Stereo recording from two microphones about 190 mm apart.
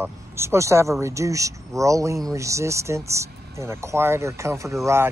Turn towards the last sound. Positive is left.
turn(degrees=-15)  # may be behind; listen again after turning